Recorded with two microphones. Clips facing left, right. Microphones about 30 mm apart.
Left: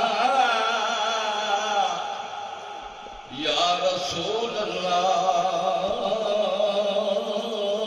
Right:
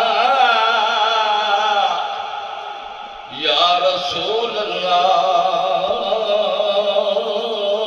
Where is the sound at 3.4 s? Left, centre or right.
Right.